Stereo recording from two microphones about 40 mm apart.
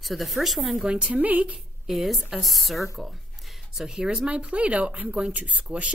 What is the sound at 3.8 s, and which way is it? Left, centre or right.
Speech, right.